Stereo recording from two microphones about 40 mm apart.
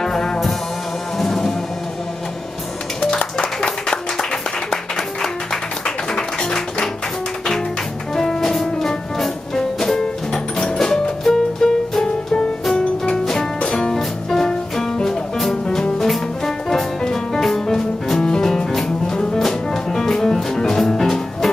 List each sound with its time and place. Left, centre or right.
0.0 s music: centre
3.1 s music: left
5.9 s music: centre
8.2 s music: centre
12.7 s music: centre
18.2 s music: centre